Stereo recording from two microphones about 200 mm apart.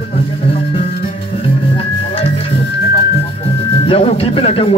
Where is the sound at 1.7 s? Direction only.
30° left (ahead or behind).